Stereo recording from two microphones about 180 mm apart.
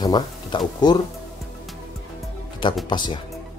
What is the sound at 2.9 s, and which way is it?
Speech, 25° left (ahead or behind).